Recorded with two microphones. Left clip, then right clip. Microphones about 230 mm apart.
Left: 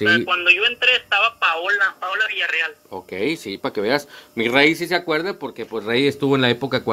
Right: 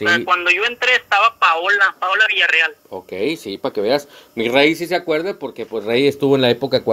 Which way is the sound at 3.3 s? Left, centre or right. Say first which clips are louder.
Right 2 dB; centre.